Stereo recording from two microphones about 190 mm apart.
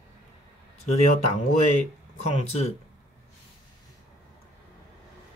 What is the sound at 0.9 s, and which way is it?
Speech, 35° left (ahead or behind).